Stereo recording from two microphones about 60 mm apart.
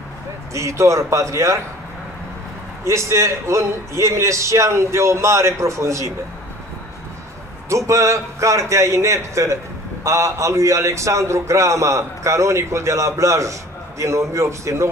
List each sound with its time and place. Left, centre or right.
0.5 s a man's voice: right
2.8 s a man's voice: right
7.7 s a man's voice: right